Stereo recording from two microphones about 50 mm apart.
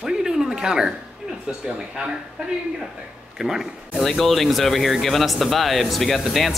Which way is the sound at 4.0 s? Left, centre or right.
Centre.